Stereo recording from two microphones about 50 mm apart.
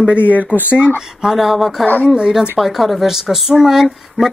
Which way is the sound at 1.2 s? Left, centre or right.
Centre.